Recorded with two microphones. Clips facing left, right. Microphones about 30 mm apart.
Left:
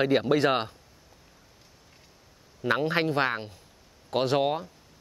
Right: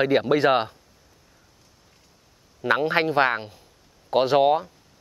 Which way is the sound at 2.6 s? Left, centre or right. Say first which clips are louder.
Right 4 dB; centre.